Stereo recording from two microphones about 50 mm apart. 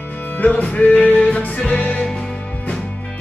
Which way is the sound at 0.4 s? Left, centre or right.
Left.